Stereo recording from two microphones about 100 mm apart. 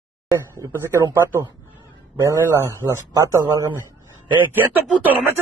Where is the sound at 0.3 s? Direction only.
30° right (ahead or behind).